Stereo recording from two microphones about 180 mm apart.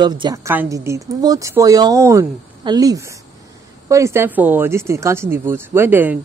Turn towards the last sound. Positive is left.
turn(degrees=-10)  # may be behind; listen again after turning